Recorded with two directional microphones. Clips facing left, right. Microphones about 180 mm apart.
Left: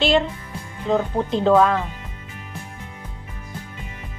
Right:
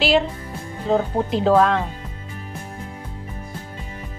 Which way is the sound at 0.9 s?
5° right (ahead or behind).